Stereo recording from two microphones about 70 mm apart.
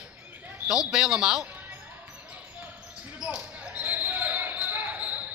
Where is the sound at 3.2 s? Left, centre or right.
Centre.